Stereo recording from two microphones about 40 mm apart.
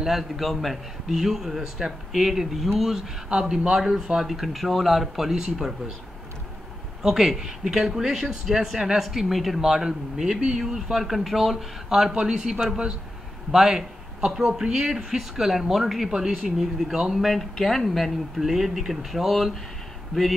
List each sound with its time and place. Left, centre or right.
0.0 s a man's voice: centre
3.3 s speech: right
7.0 s a man's voice: centre
9.6 s a man's voice: centre
16.1 s a man's voice: centre
17.2 s speech: centre